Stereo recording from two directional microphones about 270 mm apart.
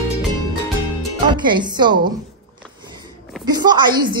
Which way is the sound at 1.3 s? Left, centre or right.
Centre.